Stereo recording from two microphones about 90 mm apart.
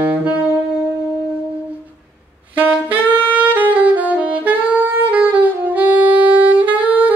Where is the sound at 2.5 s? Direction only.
20° right (ahead or behind).